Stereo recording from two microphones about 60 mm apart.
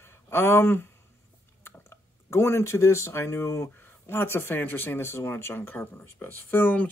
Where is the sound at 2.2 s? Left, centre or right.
Left.